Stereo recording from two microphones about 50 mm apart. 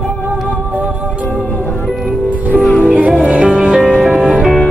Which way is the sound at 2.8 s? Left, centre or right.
Right.